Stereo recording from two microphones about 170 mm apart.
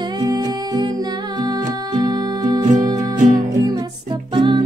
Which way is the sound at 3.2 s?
50° right (ahead or behind).